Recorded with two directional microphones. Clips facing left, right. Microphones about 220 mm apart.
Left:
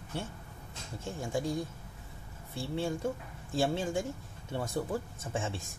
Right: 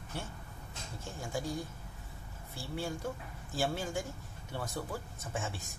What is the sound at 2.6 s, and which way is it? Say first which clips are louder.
Speech: left 5 dB; 25° left (ahead or behind).